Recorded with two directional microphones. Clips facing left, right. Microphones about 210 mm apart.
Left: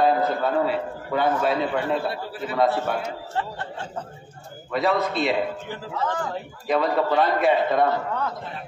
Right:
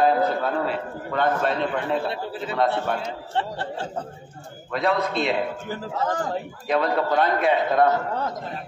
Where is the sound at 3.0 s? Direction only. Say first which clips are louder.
Right 1 dB; 30° right (ahead or behind).